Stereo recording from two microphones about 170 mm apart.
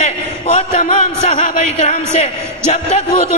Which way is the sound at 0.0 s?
40° left (ahead or behind).